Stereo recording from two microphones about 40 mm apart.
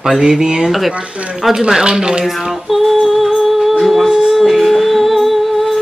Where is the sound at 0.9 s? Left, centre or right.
Right.